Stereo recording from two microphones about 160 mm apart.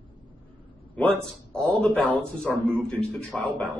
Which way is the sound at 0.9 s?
5° left (ahead or behind).